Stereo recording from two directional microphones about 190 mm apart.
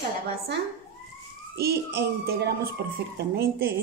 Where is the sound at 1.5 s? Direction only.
55° right (ahead or behind).